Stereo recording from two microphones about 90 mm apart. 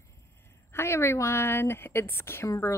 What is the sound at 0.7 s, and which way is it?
A woman's voice, 30° left (ahead or behind).